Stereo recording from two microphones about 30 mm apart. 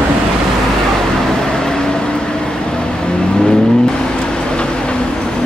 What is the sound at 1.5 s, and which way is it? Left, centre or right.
Vehicle, left.